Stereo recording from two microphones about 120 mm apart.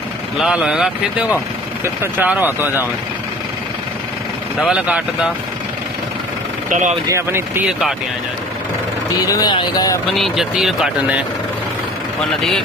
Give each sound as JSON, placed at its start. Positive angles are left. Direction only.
{"t": 0.4, "sound": "speech", "side_deg": -5}
{"t": 2.1, "sound": "speech", "side_deg": -15}
{"t": 4.6, "sound": "speech", "side_deg": -10}
{"t": 6.7, "sound": "speech", "side_deg": -90}
{"t": 7.1, "sound": "speech", "side_deg": -20}
{"t": 9.2, "sound": "speech", "side_deg": 30}
{"t": 10.1, "sound": "speech", "side_deg": 0}